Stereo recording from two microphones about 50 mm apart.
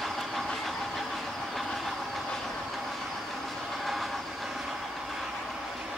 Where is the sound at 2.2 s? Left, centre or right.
Centre.